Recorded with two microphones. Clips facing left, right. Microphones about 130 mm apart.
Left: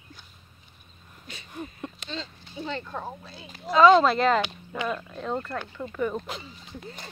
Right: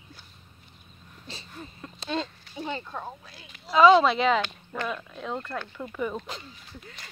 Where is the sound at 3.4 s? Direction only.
40° left (ahead or behind).